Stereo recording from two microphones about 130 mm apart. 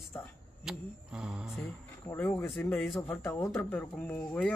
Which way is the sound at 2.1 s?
20° left (ahead or behind).